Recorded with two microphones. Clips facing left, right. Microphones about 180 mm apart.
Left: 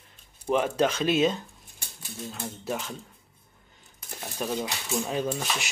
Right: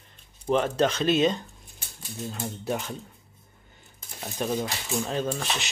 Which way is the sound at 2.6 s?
Centre (ahead or behind).